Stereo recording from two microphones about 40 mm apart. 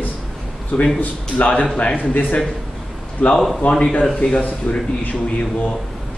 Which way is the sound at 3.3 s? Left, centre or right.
Centre.